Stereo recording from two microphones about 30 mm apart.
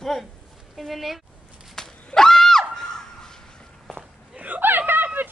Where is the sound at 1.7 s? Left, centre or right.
Centre.